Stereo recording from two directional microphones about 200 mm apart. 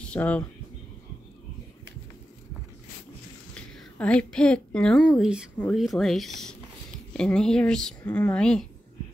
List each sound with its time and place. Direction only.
0.0 s speech: 5° left (ahead or behind)
3.5 s a woman's voice: 5° left (ahead or behind)